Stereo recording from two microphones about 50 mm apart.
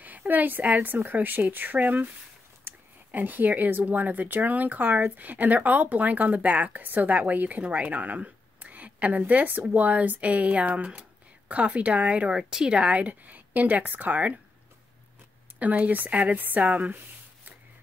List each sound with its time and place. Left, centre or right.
0.0 s speech: right
2.7 s a sound: right
3.1 s speech: right
12.4 s speech: centre; by 14.4 s right
15.6 s speech: right